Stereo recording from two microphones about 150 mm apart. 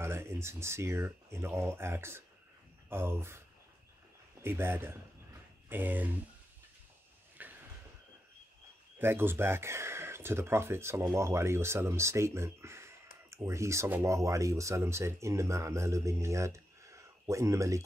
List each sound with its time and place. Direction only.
0.0 s speech: 15° right (ahead or behind)
7.4 s a sound: 10° right (ahead or behind)
8.9 s speech: 15° right (ahead or behind)